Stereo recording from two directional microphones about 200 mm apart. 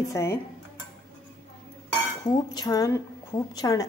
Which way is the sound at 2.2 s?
20° left (ahead or behind).